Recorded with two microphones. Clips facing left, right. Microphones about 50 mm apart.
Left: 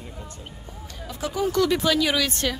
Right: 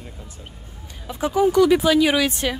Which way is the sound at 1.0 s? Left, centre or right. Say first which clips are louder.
Right 7 dB; right.